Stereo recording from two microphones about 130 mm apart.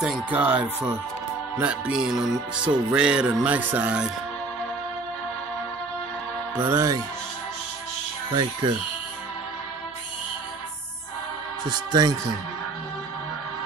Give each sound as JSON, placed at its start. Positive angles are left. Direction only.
{"t": 0.0, "sound": "speech", "side_deg": -5}
{"t": 1.6, "sound": "music", "side_deg": -5}
{"t": 2.9, "sound": "speech", "side_deg": -10}
{"t": 6.5, "sound": "speech", "side_deg": -15}
{"t": 11.7, "sound": "speech", "side_deg": -30}